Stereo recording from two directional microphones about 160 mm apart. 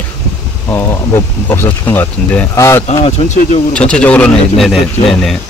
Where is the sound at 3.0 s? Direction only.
45° left (ahead or behind).